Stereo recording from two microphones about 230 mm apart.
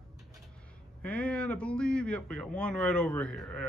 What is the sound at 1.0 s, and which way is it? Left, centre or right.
A man's voice, centre.